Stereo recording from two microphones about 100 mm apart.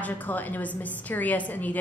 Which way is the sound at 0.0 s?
15° left (ahead or behind).